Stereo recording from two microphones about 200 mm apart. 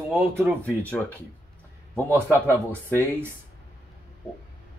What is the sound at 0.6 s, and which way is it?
Speech, 5° left (ahead or behind).